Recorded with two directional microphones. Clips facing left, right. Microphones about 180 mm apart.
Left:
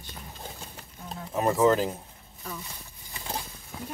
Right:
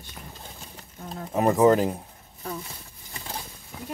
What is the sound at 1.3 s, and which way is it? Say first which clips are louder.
Speech: right 4 dB; 20° right (ahead or behind).